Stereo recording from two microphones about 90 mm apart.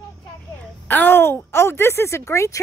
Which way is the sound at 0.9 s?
20° left (ahead or behind).